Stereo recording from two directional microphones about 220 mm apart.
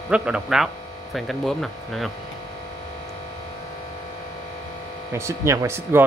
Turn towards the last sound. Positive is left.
turn(degrees=-10)  # may be behind; listen again after turning